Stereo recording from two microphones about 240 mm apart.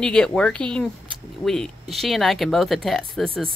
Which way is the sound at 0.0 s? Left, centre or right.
Centre.